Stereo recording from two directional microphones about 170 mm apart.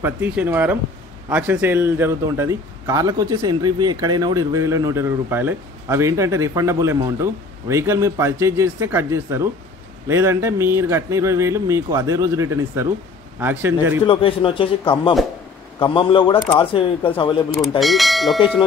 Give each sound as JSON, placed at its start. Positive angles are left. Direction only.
{"t": 0.0, "sound": "a man's voice", "side_deg": -10}
{"t": 14.0, "sound": "speech", "side_deg": 30}
{"t": 17.6, "sound": "speech", "side_deg": 0}